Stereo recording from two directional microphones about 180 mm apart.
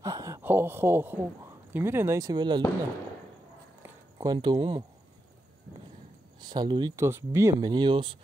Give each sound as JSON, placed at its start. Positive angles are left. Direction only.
{"t": 0.0, "sound": "a man's voice", "side_deg": -20}
{"t": 3.8, "sound": "a sound", "side_deg": -20}
{"t": 6.4, "sound": "speech", "side_deg": -25}